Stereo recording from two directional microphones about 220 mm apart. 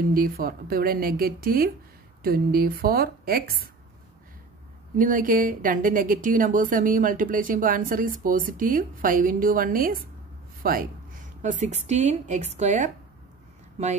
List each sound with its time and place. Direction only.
0.0 s speech: 40° right (ahead or behind)
4.9 s speech: 40° right (ahead or behind)